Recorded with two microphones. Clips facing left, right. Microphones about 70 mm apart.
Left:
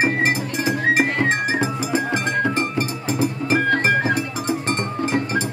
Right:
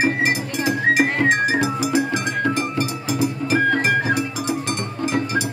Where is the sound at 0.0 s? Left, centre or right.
Left.